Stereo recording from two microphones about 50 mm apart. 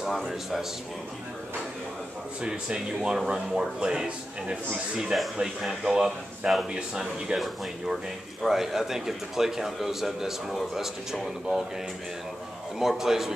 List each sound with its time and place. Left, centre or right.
0.0 s a man's voice: centre
2.4 s speech: centre
7.3 s a man's voice: centre
12.7 s speech: centre